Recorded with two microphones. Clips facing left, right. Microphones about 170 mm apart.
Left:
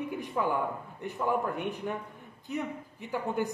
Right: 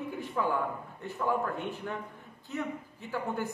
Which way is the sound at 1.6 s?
15° left (ahead or behind).